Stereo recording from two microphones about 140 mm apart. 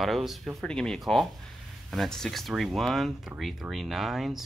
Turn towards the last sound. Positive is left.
turn(degrees=0)  # may be behind; listen again after turning